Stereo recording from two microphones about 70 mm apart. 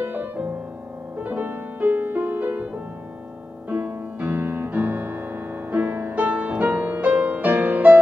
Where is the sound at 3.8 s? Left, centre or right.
Right.